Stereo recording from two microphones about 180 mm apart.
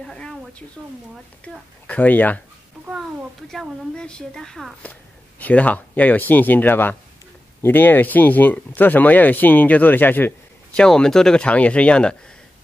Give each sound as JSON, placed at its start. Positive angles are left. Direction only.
{"t": 0.0, "sound": "a sound", "side_deg": 5}
{"t": 1.4, "sound": "speech", "side_deg": 5}
{"t": 3.4, "sound": "speech", "side_deg": 5}